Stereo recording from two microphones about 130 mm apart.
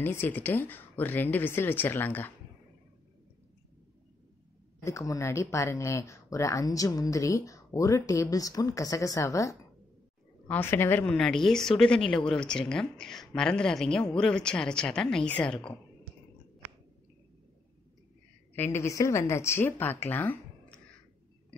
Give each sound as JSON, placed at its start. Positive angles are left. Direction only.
{"t": 0.0, "sound": "speech", "side_deg": 15}
{"t": 4.8, "sound": "speech", "side_deg": 25}
{"t": 18.5, "sound": "speech", "side_deg": 20}